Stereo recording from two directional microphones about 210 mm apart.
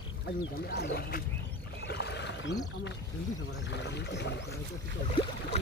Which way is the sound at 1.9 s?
55° left (ahead or behind).